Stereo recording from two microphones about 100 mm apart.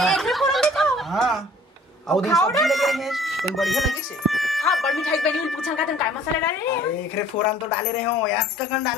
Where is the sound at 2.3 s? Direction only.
35° left (ahead or behind).